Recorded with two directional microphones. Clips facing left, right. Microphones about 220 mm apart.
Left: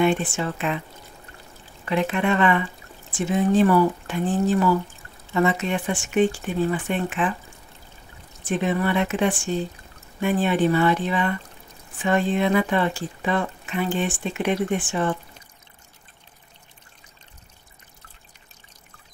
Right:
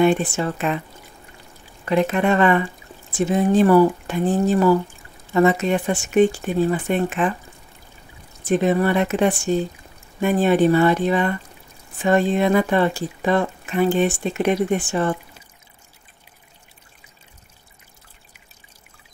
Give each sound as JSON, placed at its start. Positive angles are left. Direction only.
{"t": 0.0, "sound": "speech", "side_deg": -40}
{"t": 1.9, "sound": "speech", "side_deg": -45}
{"t": 8.5, "sound": "speech", "side_deg": -40}